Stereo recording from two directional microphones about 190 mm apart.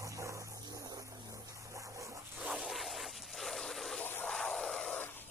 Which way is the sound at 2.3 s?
5° right (ahead or behind).